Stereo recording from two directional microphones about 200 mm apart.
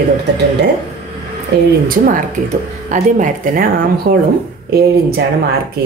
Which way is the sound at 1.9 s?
45° right (ahead or behind).